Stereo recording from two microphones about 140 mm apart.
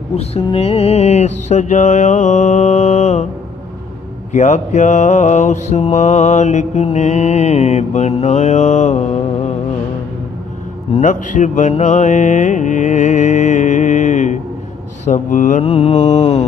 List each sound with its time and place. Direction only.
0.1 s mantra: 45° left (ahead or behind)
4.3 s mantra: 60° left (ahead or behind)
10.9 s mantra: 60° left (ahead or behind)
11.7 s music: 60° left (ahead or behind)
15.0 s mantra: 65° left (ahead or behind)
15.6 s mantra: 45° left (ahead or behind)